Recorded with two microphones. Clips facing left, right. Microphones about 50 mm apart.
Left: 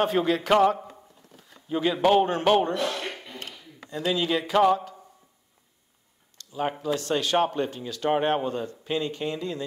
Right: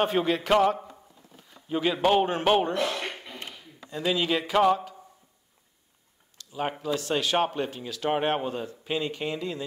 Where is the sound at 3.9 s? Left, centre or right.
Centre.